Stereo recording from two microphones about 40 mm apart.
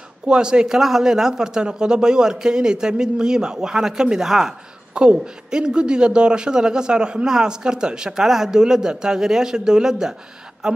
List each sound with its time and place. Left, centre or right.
0.3 s speech: right
4.9 s speech: right